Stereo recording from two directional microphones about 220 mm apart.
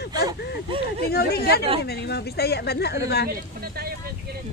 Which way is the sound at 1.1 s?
45° left (ahead or behind).